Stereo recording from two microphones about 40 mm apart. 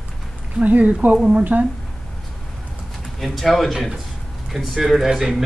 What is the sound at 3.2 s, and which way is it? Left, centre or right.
Speech, centre.